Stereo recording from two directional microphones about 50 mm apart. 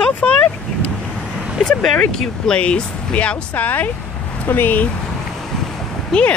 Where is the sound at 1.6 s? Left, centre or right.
Centre.